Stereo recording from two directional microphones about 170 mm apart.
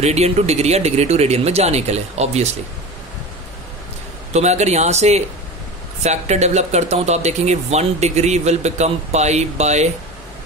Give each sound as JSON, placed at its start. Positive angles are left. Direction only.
{"t": 0.0, "sound": "speech", "side_deg": -40}
{"t": 4.3, "sound": "speech", "side_deg": -40}